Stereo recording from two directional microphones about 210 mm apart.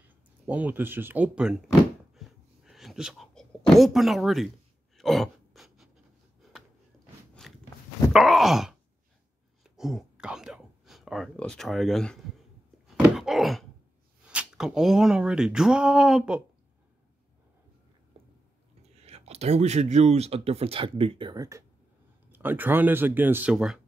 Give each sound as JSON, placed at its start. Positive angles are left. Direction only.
{"t": 0.5, "sound": "speech", "side_deg": -5}
{"t": 2.1, "sound": "a sound", "side_deg": 0}
{"t": 4.9, "sound": "gasp", "side_deg": 0}
{"t": 7.3, "sound": "biting", "side_deg": 0}
{"t": 8.1, "sound": "wail", "side_deg": 0}
{"t": 9.6, "sound": "whispering", "side_deg": 0}
{"t": 12.8, "sound": "a sound", "side_deg": 0}
{"t": 14.3, "sound": "speech", "side_deg": -5}
{"t": 18.9, "sound": "speech", "side_deg": -30}